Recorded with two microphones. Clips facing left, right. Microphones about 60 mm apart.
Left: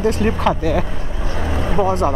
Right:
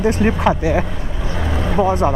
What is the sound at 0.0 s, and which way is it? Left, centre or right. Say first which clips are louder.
Speech: right 1 dB; centre.